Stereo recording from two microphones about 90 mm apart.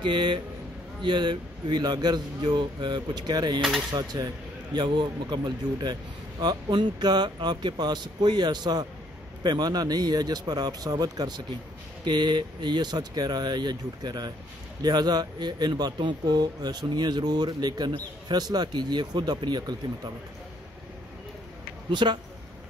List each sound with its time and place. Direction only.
0.0 s speech: 65° right (ahead or behind); by 4.3 s 45° right (ahead or behind)
4.7 s speech: 60° right (ahead or behind)
21.9 s speech: 60° right (ahead or behind)